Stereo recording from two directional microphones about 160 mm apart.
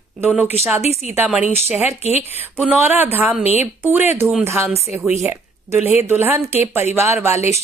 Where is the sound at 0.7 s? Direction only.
15° right (ahead or behind).